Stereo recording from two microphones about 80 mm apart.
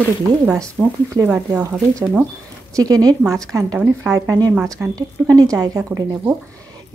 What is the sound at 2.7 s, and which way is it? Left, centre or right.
A woman's voice, right.